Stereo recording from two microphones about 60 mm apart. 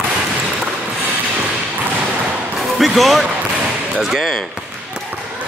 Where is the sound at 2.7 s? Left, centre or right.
Centre.